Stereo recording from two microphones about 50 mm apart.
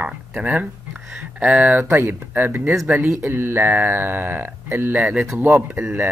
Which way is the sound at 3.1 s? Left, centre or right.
Right.